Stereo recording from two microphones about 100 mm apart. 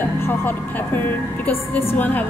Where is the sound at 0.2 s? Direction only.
20° left (ahead or behind).